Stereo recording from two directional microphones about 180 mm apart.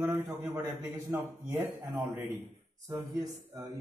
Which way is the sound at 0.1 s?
20° right (ahead or behind).